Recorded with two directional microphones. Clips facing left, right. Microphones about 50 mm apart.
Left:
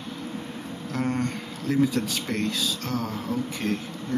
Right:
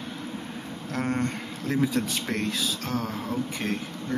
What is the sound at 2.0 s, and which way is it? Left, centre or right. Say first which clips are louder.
Speech: even; right.